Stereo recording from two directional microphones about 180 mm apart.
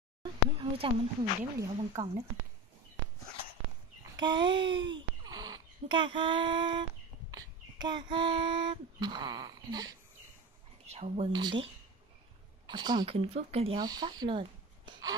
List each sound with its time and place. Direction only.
0.2 s a sound: 30° right (ahead or behind)
1.4 s speech: 15° right (ahead or behind)
4.2 s a child's voice: 25° right (ahead or behind)
10.9 s a child's voice: 35° right (ahead or behind)
13.7 s a woman's voice: 20° right (ahead or behind)